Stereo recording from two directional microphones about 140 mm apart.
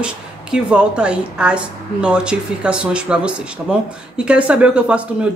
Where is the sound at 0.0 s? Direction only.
5° right (ahead or behind).